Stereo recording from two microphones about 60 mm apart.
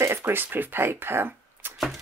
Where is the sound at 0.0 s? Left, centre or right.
Right.